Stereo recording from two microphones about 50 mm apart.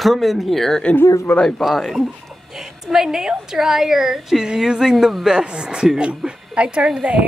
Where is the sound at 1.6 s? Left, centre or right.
Centre.